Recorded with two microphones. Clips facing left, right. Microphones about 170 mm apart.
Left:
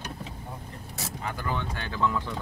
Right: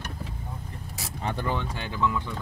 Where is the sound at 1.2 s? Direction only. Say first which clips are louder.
Right 4 dB; 30° right (ahead or behind).